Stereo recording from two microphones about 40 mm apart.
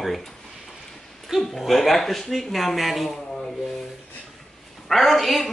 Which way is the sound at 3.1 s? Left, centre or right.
Centre.